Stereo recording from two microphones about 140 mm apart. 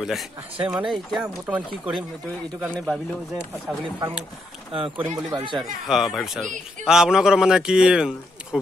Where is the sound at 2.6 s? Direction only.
5° right (ahead or behind).